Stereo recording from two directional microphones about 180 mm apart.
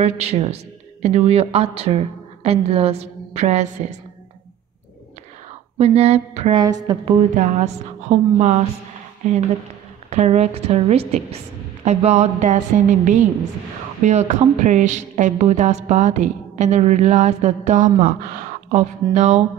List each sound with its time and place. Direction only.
0.0 s a woman's voice: 35° right (ahead or behind)
5.8 s a woman's voice: 35° right (ahead or behind)
6.6 s a woman's voice: 20° right (ahead or behind)
7.3 s a woman's voice: 40° right (ahead or behind)